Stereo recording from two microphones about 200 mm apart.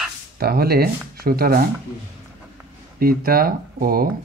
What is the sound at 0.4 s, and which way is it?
Speech, 50° right (ahead or behind).